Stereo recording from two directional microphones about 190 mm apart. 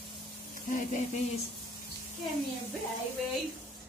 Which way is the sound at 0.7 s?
40° left (ahead or behind).